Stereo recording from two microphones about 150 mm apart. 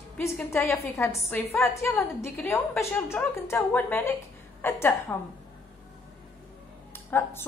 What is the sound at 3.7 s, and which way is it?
A woman's voice, 10° left (ahead or behind).